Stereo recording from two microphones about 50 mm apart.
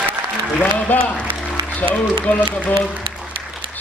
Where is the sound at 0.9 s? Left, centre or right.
Left.